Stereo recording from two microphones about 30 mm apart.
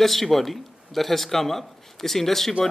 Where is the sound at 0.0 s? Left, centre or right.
Centre.